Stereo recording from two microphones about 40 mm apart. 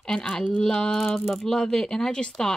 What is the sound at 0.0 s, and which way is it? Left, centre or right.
A woman's voice, centre.